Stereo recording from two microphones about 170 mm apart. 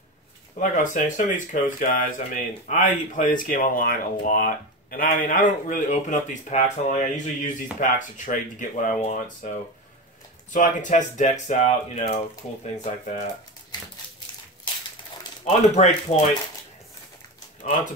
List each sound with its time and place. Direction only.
0.6 s speech: 45° left (ahead or behind)
10.5 s speech: 50° left (ahead or behind)
15.4 s speech: 40° left (ahead or behind)